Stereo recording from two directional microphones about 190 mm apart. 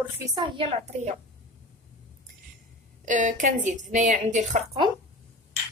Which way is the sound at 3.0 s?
40° right (ahead or behind).